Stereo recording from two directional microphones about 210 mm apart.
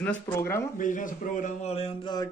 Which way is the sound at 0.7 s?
40° left (ahead or behind).